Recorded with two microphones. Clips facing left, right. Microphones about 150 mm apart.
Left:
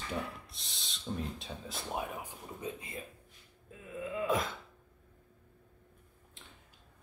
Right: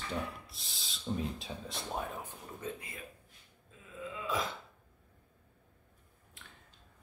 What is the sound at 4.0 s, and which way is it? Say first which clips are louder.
Throat clearing: left 4 dB; 50° left (ahead or behind).